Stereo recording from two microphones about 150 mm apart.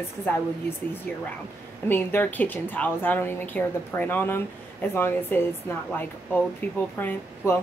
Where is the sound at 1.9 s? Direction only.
15° left (ahead or behind).